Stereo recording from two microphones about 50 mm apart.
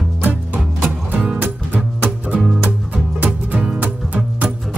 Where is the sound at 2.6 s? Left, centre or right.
Right.